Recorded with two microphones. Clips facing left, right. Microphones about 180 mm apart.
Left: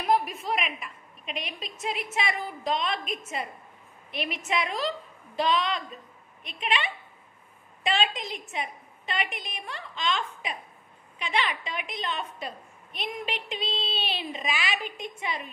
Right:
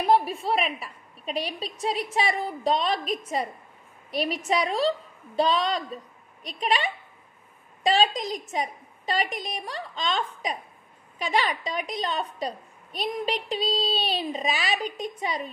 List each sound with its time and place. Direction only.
0.0 s a woman's voice: 30° right (ahead or behind)